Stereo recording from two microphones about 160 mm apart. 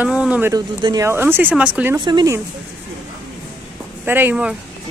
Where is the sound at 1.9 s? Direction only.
25° right (ahead or behind).